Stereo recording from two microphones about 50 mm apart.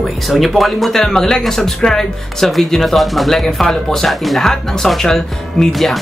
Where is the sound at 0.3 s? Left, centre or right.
Centre.